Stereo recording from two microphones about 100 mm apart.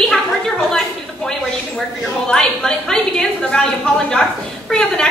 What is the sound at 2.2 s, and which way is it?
A woman's voice, 5° left (ahead or behind).